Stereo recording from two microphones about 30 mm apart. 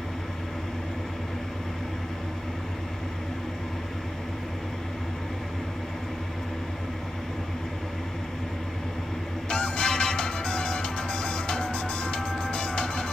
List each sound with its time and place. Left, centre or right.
9.5 s music: left
11.7 s music: left